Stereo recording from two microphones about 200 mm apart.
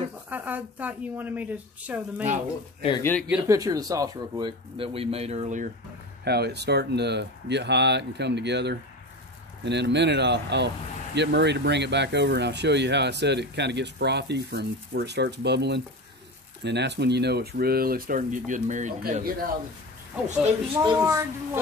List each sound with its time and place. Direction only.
0.3 s a woman's voice: 10° right (ahead or behind)
3.0 s speech: 10° left (ahead or behind)
3.3 s speech: 5° right (ahead or behind)
3.5 s speech: 20° right (ahead or behind); by 5.7 s 35° right (ahead or behind)
6.2 s speech: 55° right (ahead or behind)
20.8 s a woman's voice: 20° right (ahead or behind)